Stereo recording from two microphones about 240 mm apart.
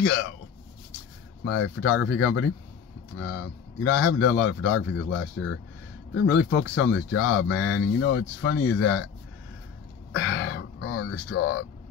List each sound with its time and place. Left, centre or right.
1.4 s speech: left
6.1 s speech: left
6.6 s speech: left
10.1 s speech: left